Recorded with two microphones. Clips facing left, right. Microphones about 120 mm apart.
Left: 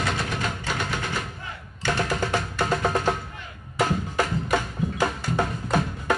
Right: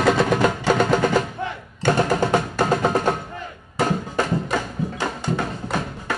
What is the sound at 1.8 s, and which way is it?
Music, 45° right (ahead or behind).